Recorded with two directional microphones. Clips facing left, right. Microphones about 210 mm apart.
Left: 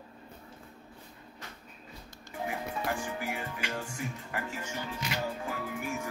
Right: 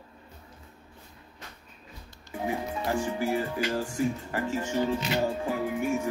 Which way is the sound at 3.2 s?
30° right (ahead or behind).